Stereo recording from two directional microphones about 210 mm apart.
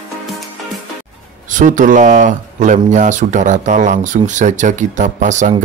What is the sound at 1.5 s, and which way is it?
Speech, 35° right (ahead or behind).